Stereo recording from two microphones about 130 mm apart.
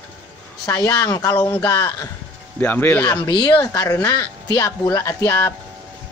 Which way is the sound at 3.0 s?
35° left (ahead or behind).